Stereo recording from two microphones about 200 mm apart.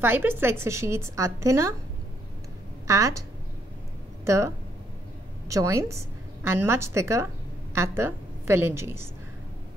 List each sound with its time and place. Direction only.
0.0 s a woman's voice: 10° right (ahead or behind)
2.9 s a woman's voice: 15° right (ahead or behind)
5.5 s a woman's voice: 15° right (ahead or behind)